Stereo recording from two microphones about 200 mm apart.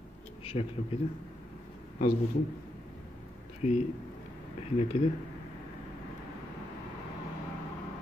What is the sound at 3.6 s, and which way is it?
Speech, 35° left (ahead or behind).